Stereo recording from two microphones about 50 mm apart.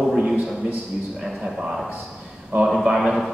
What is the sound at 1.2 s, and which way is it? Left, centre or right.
Speech, centre.